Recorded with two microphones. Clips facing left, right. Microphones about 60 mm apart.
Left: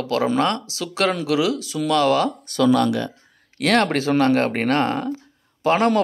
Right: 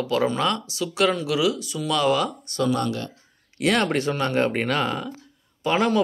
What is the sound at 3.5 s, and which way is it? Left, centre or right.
Speech, left.